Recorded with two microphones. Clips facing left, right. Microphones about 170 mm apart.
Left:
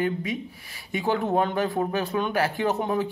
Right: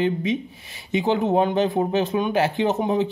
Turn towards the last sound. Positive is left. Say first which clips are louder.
# right 4 dB
turn(degrees=-20)  # may be behind; listen again after turning